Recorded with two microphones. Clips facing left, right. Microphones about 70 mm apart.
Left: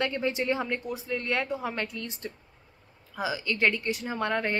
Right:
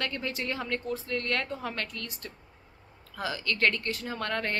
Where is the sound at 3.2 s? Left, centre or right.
Centre.